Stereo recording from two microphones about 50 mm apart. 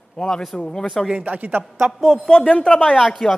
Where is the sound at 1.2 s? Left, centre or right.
Right.